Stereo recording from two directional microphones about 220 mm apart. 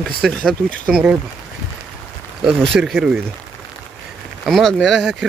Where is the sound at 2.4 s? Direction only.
Centre (ahead or behind).